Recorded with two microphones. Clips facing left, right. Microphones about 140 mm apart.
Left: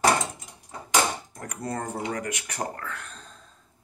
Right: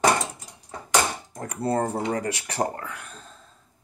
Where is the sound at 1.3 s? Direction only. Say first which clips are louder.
Right 7 dB; 30° right (ahead or behind).